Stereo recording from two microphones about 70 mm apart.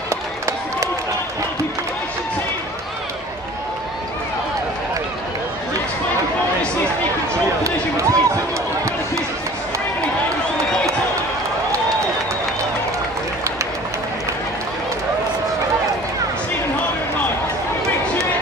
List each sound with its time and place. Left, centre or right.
7.6 s basketball bounce: right